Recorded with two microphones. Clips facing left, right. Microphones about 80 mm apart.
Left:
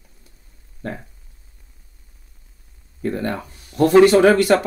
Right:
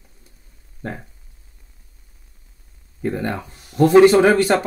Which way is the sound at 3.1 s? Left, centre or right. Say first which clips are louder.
Left 1 dB; right.